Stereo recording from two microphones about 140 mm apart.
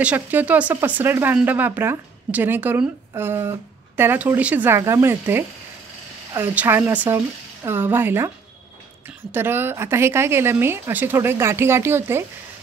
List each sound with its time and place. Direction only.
0.0 s speech: 10° right (ahead or behind)
9.3 s speech: 15° right (ahead or behind)